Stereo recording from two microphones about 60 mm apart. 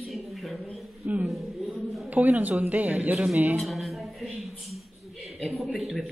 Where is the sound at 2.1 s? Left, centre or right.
Right.